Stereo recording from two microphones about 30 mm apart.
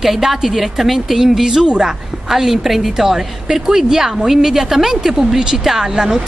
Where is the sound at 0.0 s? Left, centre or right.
Centre.